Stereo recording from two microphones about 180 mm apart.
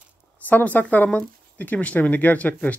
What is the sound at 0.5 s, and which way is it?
Speech, 10° left (ahead or behind).